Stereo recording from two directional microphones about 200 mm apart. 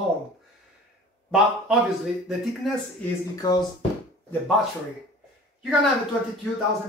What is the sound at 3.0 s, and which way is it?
Speech, 20° left (ahead or behind).